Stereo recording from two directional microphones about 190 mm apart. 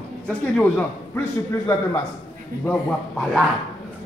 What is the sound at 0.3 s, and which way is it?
A man's voice, 10° left (ahead or behind).